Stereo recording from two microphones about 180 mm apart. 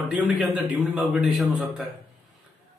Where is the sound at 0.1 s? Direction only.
5° right (ahead or behind).